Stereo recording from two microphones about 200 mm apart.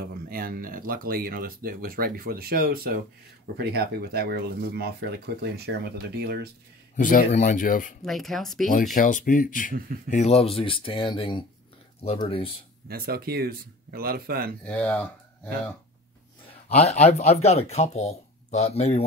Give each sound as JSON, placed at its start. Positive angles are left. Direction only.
{"t": 0.0, "sound": "speech", "side_deg": -45}
{"t": 7.0, "sound": "speech", "side_deg": 40}
{"t": 8.0, "sound": "speech", "side_deg": 0}
{"t": 8.9, "sound": "speech", "side_deg": 40}
{"t": 12.8, "sound": "speech", "side_deg": -50}
{"t": 14.6, "sound": "speech", "side_deg": 5}
{"t": 16.4, "sound": "speech", "side_deg": 30}